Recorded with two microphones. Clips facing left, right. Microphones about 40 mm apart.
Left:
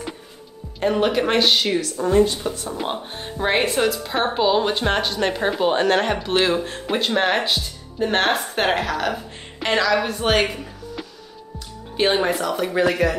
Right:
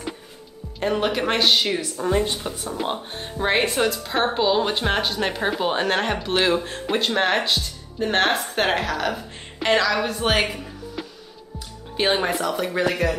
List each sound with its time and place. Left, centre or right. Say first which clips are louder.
0.7 s speech: left 3 dB; centre
2.0 s speech: left 5 dB; centre
2.6 s speech: even; centre